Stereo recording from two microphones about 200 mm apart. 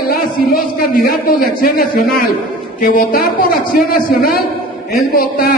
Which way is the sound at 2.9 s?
40° left (ahead or behind).